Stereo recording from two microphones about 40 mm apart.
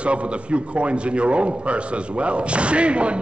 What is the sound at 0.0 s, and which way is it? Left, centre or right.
A man's voice, right.